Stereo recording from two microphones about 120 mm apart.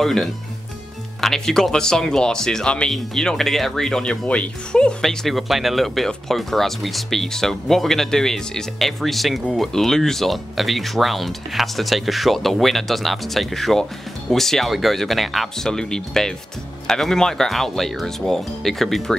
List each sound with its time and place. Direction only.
0.0 s speech: centre (ahead or behind)